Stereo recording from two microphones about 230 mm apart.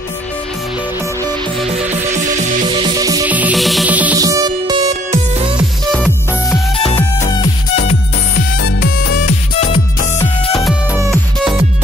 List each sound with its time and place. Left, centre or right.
2.0 s music: right
2.8 s music: centre
5.9 s music: centre
7.7 s music: left
8.4 s music: left
10.5 s music: centre